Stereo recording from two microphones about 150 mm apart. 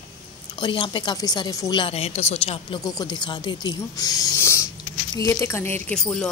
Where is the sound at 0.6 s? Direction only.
30° left (ahead or behind).